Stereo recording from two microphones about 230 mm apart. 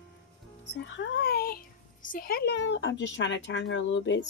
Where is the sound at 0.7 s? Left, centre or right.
Left.